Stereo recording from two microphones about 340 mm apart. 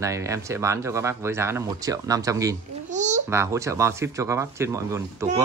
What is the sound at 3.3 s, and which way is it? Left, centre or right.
Speech, centre.